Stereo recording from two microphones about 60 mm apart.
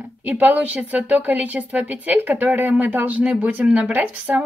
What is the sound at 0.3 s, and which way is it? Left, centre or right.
A woman's voice, right.